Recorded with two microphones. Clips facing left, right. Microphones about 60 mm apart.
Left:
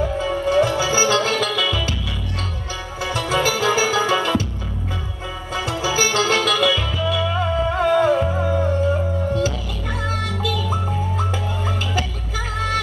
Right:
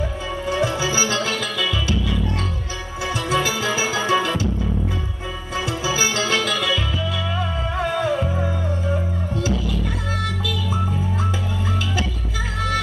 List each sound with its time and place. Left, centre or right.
0.5 s music: left
3.3 s music: left
5.7 s music: left